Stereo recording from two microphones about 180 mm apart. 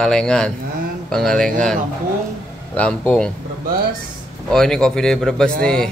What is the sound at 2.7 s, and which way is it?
Speech, 5° left (ahead or behind).